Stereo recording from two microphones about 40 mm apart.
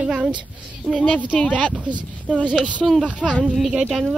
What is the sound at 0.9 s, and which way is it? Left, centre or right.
Speech, right.